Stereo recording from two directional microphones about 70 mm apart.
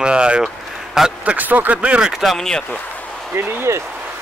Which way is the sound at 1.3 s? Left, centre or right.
Right.